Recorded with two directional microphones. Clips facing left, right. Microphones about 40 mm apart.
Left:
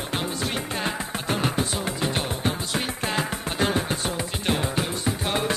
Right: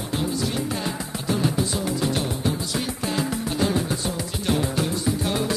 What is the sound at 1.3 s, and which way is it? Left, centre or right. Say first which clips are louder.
Music: right 2 dB; left.